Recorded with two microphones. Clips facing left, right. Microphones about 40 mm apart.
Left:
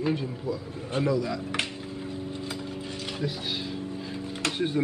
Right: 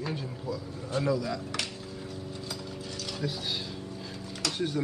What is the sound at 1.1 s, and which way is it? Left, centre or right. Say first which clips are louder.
Speech: left 2 dB; centre.